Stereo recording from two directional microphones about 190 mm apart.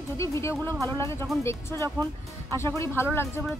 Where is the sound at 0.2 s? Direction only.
15° left (ahead or behind).